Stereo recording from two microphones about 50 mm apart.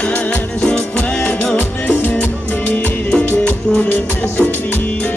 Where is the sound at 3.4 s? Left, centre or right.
Left.